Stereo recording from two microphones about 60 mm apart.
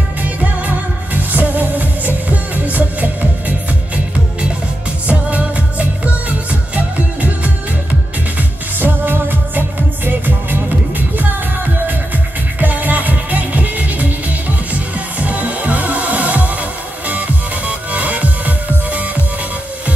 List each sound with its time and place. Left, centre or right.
0.2 s music: right
17.6 s music: right